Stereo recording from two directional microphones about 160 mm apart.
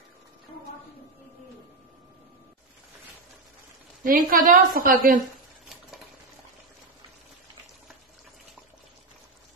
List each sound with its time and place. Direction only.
4.0 s a woman's voice: 60° right (ahead or behind)